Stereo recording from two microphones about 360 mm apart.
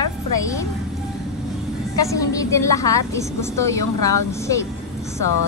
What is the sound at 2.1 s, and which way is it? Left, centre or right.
A woman's voice, centre.